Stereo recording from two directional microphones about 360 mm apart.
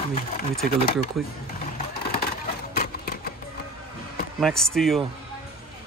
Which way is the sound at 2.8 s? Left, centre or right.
Left.